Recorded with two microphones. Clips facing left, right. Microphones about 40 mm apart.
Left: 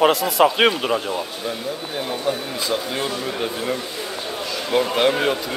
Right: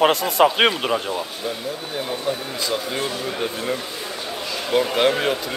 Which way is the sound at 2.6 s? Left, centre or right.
Centre.